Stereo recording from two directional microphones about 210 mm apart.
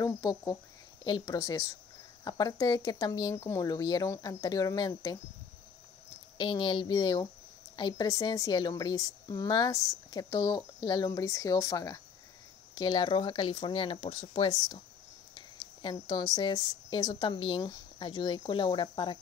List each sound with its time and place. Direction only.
0.0 s a woman's voice: 15° left (ahead or behind)
6.3 s a woman's voice: 20° left (ahead or behind)